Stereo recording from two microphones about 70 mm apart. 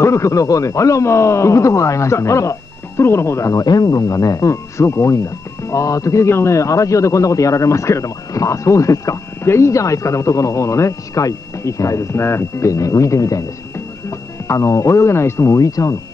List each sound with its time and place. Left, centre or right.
0.0 s speech: left
3.6 s speech: left
9.4 s speech: left
14.5 s speech: left